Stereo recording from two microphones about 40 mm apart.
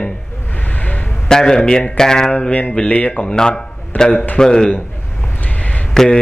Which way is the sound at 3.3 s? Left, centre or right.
Centre.